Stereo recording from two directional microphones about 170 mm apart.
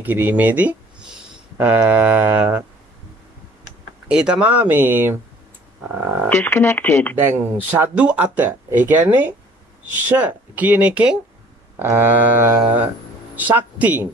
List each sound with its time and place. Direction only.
0.0 s speech: 10° right (ahead or behind)
4.1 s speech: 5° right (ahead or behind)
6.2 s speech: 10° left (ahead or behind)
7.2 s speech: 10° right (ahead or behind)